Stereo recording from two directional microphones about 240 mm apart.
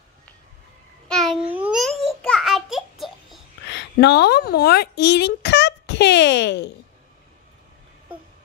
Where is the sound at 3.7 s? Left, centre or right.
Left.